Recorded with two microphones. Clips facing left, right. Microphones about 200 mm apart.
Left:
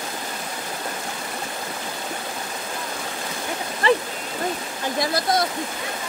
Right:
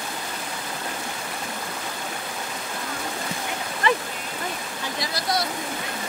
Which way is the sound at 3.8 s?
30° left (ahead or behind).